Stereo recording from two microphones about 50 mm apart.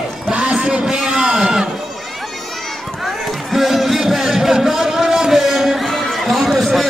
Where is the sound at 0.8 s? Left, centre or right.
Centre.